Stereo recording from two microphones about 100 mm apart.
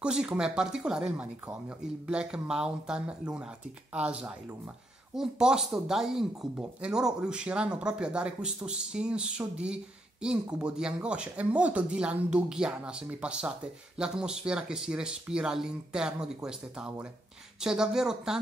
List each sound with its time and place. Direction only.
0.0 s speech: 10° right (ahead or behind)